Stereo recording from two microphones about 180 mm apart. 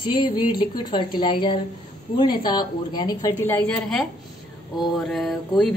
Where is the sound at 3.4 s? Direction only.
10° left (ahead or behind).